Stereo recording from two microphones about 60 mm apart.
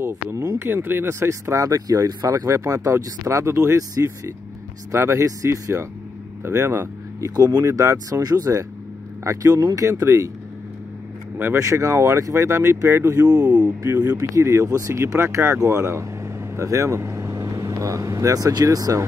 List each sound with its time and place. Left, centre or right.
0.8 s speech: right
2.6 s speech: right
5.2 s speech: right
7.3 s speech: right
9.2 s speech: right
10.0 s speech: right
11.3 s speech: right
11.6 s speech: right
13.4 s speech: right
13.9 s speech: right
14.4 s speech: right